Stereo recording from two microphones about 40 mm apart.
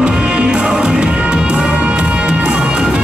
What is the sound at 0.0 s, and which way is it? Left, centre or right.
Music, right.